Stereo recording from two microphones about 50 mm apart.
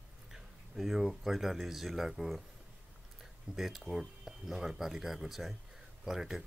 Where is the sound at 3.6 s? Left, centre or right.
Centre.